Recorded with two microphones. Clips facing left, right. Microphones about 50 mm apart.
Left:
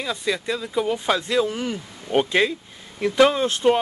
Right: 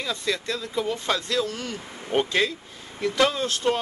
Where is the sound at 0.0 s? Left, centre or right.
Centre.